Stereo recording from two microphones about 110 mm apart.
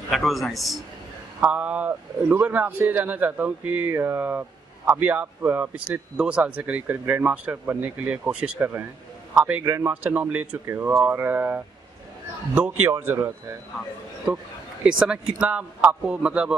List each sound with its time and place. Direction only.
0.1 s a man's voice: centre (ahead or behind)
1.4 s a man's voice: 10° right (ahead or behind)
10.0 s a man's voice: 15° right (ahead or behind)
14.9 s a man's voice: 5° right (ahead or behind)